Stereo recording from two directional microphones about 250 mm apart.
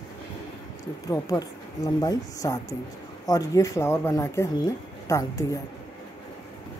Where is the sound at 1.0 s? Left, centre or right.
Centre.